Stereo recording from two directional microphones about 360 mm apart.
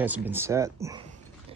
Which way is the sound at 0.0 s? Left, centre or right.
Centre.